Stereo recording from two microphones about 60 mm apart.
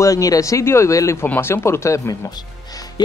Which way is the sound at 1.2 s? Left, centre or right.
Left.